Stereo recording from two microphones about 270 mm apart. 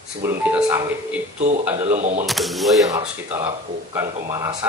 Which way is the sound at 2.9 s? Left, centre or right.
Centre.